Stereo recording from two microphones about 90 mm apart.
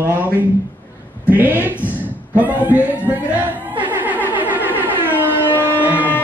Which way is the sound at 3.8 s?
20° right (ahead or behind).